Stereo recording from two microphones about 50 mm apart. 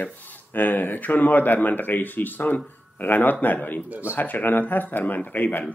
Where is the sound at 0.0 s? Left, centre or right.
Left.